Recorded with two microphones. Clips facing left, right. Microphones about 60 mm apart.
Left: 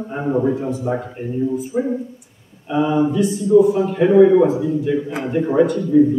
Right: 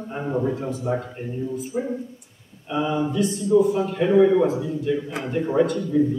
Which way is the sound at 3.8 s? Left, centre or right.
Centre.